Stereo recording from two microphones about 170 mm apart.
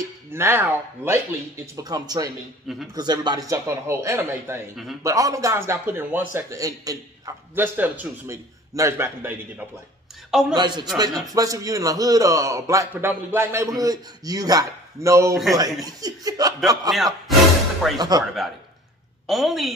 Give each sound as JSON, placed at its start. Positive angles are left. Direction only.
{"t": 0.3, "sound": "a man's voice", "side_deg": -15}
{"t": 10.5, "sound": "a man's voice", "side_deg": -25}
{"t": 16.9, "sound": "speech", "side_deg": 0}
{"t": 17.9, "sound": "a man's voice", "side_deg": -25}
{"t": 19.2, "sound": "a woman's voice", "side_deg": 0}